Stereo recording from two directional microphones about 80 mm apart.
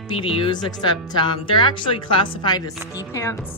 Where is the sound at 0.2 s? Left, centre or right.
Left.